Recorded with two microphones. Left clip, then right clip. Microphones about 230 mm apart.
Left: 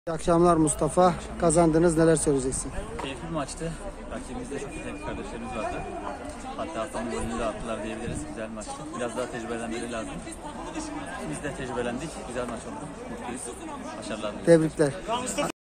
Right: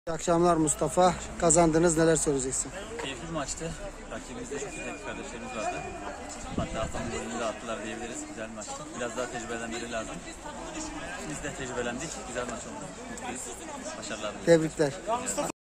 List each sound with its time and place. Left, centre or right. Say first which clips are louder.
0.1 s speech: left 3 dB; centre
7.3 s speech: left 1 dB; centre
9.0 s speech: left 2 dB; centre
14.2 s speech: left 3 dB; centre